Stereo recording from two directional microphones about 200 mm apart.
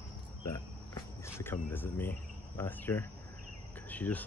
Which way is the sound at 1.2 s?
10° left (ahead or behind).